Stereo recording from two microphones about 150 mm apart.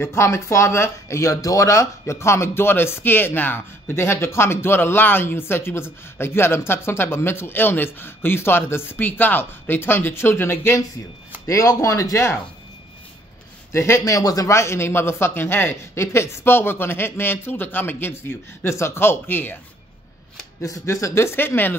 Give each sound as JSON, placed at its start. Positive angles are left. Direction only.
{"t": 0.0, "sound": "speech", "side_deg": 20}
{"t": 13.7, "sound": "speech", "side_deg": 20}
{"t": 20.6, "sound": "speech", "side_deg": 20}